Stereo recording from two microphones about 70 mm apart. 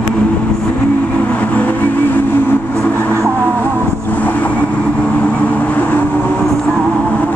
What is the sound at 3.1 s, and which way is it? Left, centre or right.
Vehicle, right.